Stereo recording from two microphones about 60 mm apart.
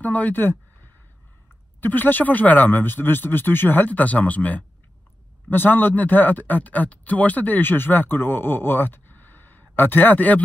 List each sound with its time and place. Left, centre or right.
0.0 s speech: left
1.8 s speech: left